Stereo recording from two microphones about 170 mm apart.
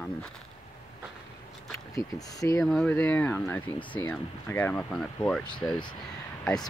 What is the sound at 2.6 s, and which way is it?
Speech, 5° left (ahead or behind).